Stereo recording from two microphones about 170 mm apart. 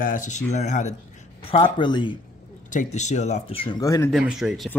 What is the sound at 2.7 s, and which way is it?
Speech, 45° left (ahead or behind).